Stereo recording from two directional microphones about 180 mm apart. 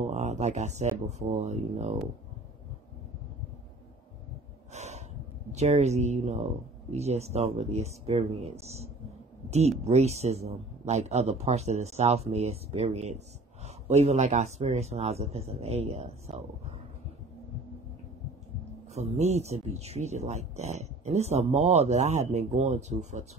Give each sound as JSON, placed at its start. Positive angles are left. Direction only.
{"t": 0.1, "sound": "speech", "side_deg": -40}
{"t": 4.7, "sound": "gasp", "side_deg": -40}
{"t": 5.5, "sound": "speech", "side_deg": -40}
{"t": 18.9, "sound": "speech", "side_deg": -40}